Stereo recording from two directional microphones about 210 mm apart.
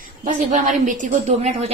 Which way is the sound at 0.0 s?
40° right (ahead or behind).